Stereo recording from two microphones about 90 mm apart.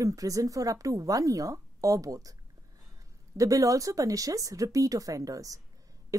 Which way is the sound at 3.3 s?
40° right (ahead or behind).